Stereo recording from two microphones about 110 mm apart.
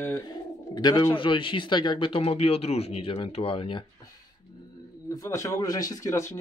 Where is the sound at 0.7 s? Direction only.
40° left (ahead or behind); by 3.8 s 55° left (ahead or behind).